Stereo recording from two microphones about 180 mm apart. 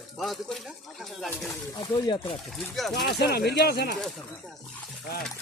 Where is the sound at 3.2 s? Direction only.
65° left (ahead or behind).